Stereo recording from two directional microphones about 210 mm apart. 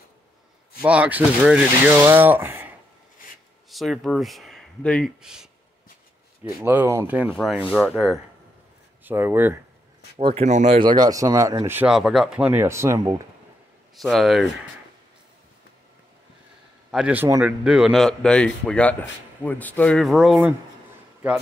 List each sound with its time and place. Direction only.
0.8 s speech: 5° right (ahead or behind)
3.7 s speech: centre (ahead or behind)
6.6 s speech: 10° right (ahead or behind)
10.1 s speech: 30° right (ahead or behind)
10.8 s speech: 20° right (ahead or behind)
13.9 s speech: centre (ahead or behind)
16.9 s speech: 5° right (ahead or behind)